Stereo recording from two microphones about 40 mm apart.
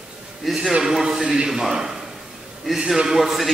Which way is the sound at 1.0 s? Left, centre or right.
Centre.